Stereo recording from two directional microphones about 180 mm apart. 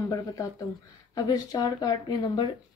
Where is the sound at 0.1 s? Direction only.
20° left (ahead or behind).